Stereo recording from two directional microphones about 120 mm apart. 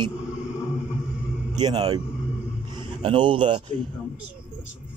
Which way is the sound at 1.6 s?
50° right (ahead or behind).